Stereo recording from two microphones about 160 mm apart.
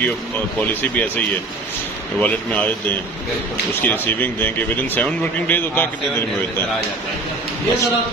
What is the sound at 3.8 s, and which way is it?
A man's voice, 10° left (ahead or behind).